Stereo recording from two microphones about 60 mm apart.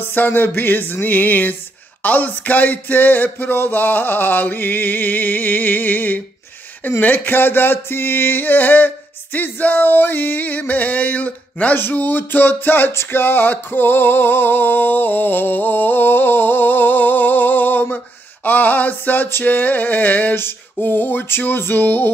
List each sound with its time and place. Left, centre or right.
0.0 s music: left
17.9 s a sound: left
19.2 s music: left